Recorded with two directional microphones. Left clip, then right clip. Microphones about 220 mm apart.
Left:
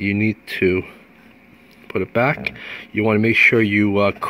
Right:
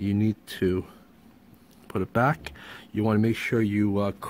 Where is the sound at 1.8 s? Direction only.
30° right (ahead or behind).